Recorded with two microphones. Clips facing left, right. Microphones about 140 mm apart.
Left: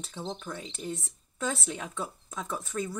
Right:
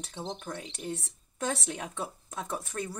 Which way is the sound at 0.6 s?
65° right (ahead or behind).